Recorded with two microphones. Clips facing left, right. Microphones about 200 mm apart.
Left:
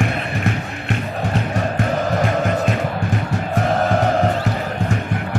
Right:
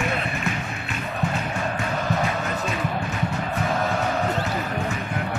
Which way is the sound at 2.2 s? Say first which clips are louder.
Left 7 dB; 55° left (ahead or behind).